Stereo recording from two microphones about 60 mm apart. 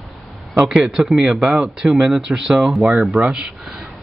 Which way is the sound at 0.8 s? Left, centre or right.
Centre.